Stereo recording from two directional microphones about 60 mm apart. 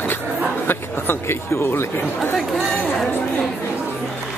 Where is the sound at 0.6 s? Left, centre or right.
Left.